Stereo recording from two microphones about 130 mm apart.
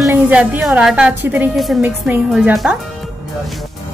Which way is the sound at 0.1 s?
10° right (ahead or behind).